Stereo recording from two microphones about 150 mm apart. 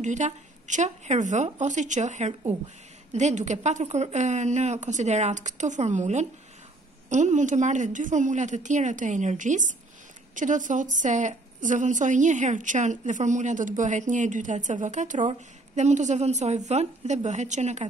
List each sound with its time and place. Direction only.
0.0 s a woman's voice: 55° right (ahead or behind)